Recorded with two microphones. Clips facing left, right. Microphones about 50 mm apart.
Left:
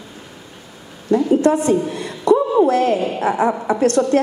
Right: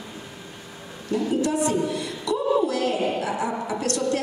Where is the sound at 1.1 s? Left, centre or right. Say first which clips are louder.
Left 9 dB; left.